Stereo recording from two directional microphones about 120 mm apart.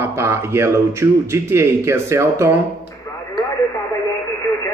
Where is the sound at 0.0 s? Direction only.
20° right (ahead or behind).